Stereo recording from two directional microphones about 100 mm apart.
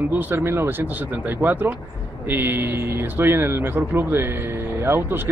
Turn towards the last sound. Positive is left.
turn(degrees=-25)  # may be behind; listen again after turning